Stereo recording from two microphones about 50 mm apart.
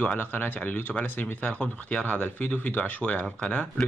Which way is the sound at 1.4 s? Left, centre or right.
Left.